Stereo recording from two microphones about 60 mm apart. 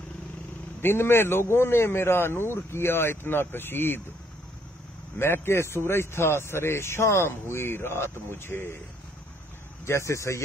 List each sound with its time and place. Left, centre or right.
0.7 s a man's voice: left
5.2 s a man's voice: left
9.8 s speech: left